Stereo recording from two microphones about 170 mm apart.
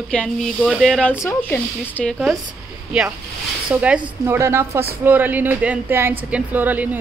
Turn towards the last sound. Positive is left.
turn(degrees=-10)  # may be behind; listen again after turning